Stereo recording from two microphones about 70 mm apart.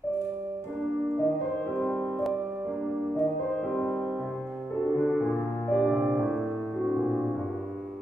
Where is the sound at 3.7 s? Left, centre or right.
Left.